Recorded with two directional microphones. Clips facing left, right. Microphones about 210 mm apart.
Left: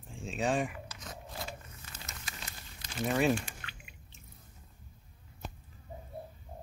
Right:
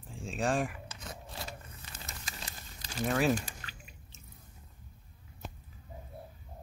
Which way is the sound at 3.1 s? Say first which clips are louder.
Even; centre (ahead or behind).